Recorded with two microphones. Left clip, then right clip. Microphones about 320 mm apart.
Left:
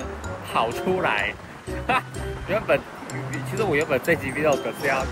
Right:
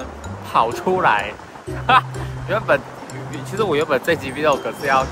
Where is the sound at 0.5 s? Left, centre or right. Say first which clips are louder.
Right 6 dB; centre.